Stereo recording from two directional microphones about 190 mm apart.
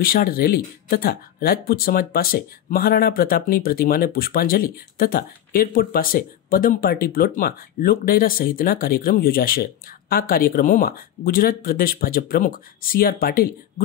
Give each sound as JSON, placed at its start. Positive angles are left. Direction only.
{"t": 0.0, "sound": "speech", "side_deg": 50}